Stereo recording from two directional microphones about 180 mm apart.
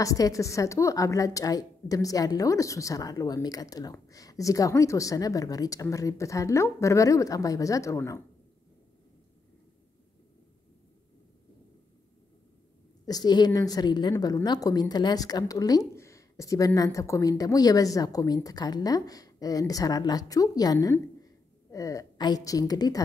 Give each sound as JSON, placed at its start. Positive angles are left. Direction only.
{"t": 0.0, "sound": "a woman's voice", "side_deg": 20}
{"t": 13.0, "sound": "a woman's voice", "side_deg": 20}